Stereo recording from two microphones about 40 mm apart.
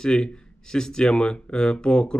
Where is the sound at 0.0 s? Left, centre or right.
Left.